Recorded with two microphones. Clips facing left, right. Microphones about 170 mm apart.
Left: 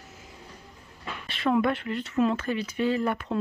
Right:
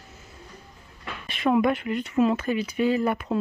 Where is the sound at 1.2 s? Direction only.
15° right (ahead or behind).